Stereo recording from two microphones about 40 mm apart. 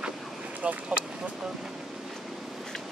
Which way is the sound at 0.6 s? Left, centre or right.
Right.